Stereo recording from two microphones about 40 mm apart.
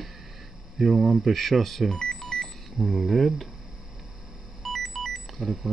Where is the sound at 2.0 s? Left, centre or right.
Centre.